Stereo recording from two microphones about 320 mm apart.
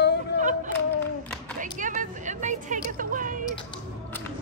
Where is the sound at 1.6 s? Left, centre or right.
Right.